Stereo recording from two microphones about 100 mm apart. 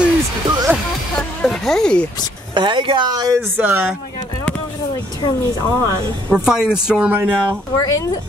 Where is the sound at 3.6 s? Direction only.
20° right (ahead or behind).